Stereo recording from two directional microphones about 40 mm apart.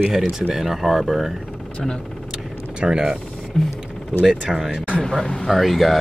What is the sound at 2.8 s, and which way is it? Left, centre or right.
Speech, right.